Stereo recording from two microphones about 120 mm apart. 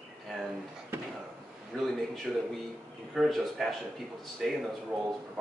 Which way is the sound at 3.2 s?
Centre (ahead or behind).